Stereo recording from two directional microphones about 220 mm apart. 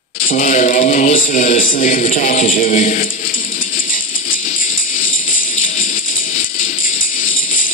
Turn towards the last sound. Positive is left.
turn(degrees=40)  # may be behind; listen again after turning